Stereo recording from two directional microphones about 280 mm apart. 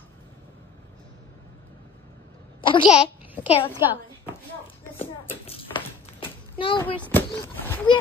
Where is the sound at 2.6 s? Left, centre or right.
Centre.